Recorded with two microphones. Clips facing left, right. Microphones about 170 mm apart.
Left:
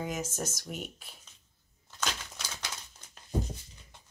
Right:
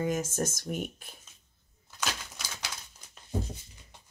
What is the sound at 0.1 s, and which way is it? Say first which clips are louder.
Speech: right 5 dB; 50° right (ahead or behind).